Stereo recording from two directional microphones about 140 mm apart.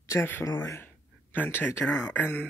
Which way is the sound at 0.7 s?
15° left (ahead or behind).